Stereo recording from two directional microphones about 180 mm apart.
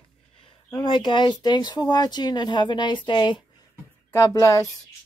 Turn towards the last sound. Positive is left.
turn(degrees=15)  # may be behind; listen again after turning